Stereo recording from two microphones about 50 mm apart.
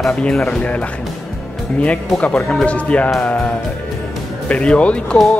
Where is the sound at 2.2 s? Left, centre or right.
Left.